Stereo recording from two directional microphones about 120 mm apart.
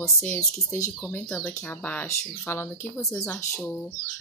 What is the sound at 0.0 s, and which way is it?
Speech, 20° left (ahead or behind).